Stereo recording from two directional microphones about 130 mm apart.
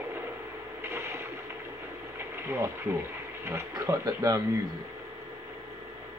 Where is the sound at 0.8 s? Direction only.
20° right (ahead or behind).